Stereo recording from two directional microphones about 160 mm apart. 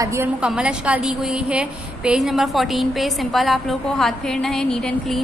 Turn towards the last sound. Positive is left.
turn(degrees=5)  # may be behind; listen again after turning